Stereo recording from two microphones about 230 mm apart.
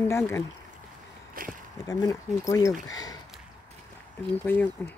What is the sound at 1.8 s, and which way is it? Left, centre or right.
Speech, centre.